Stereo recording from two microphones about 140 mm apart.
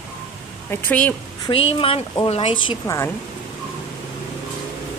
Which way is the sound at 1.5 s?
40° left (ahead or behind).